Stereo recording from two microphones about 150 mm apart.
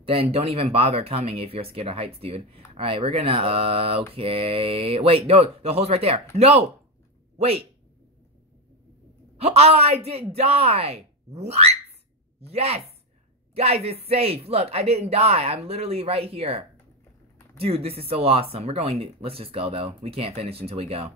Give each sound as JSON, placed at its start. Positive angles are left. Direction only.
{"t": 0.0, "sound": "speech", "side_deg": -35}
{"t": 9.4, "sound": "speech", "side_deg": -45}